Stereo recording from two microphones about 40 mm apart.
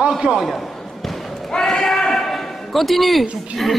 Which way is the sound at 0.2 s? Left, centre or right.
Centre.